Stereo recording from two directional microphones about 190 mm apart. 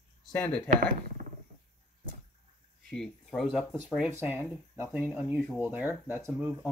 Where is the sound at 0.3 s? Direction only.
10° left (ahead or behind).